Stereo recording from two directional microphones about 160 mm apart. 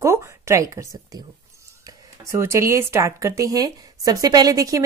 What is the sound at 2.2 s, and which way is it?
Speech, 15° right (ahead or behind).